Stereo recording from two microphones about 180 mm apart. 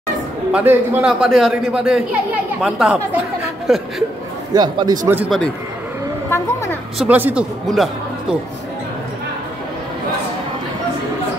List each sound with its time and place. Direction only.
0.5 s a man's voice: 5° right (ahead or behind)
4.6 s a man's voice: 20° right (ahead or behind)
5.0 s a man's voice: 10° right (ahead or behind)
6.3 s a woman's voice: 15° left (ahead or behind)
7.0 s a man's voice: 10° right (ahead or behind)